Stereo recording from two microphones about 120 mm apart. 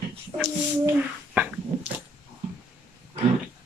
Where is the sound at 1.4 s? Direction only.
15° right (ahead or behind).